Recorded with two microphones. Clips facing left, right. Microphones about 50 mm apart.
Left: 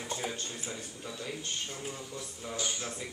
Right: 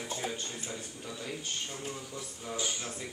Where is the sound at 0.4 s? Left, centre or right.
Centre.